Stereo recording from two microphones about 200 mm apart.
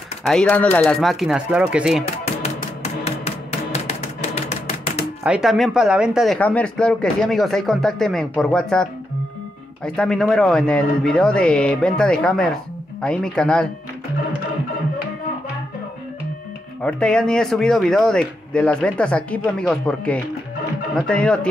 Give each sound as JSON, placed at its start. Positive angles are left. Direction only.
{"t": 0.3, "sound": "speech", "side_deg": 5}
{"t": 2.4, "sound": "music", "side_deg": 30}
{"t": 5.2, "sound": "speech", "side_deg": -5}
{"t": 9.8, "sound": "speech", "side_deg": 5}
{"t": 16.8, "sound": "speech", "side_deg": 5}